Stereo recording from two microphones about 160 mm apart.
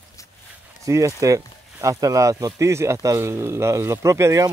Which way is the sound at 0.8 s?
20° right (ahead or behind).